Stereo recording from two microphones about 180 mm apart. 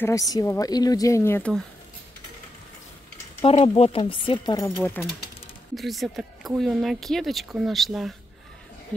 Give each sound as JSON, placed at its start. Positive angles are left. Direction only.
{"t": 0.0, "sound": "speech", "side_deg": 20}
{"t": 3.4, "sound": "speech", "side_deg": 35}
{"t": 5.0, "sound": "speech", "side_deg": 10}